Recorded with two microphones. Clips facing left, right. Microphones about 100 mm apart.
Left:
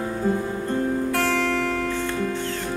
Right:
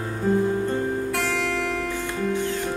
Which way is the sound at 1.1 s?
5° right (ahead or behind).